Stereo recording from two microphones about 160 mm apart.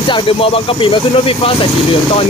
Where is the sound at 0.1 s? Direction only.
35° left (ahead or behind).